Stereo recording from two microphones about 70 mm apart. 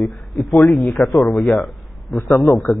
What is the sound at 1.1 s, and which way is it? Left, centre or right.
Speech, centre.